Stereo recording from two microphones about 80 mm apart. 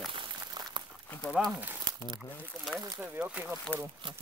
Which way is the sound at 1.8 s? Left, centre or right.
Right.